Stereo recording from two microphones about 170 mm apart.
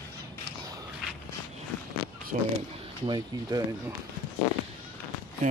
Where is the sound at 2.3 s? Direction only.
45° right (ahead or behind).